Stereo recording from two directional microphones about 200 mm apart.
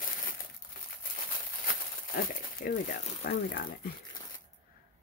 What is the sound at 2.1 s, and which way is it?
Speech, 45° left (ahead or behind).